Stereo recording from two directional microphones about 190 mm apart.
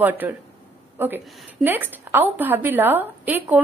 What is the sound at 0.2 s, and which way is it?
Speech, 10° right (ahead or behind).